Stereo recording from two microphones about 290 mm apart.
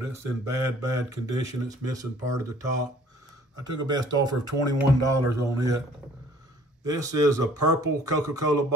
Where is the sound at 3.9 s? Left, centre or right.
Centre.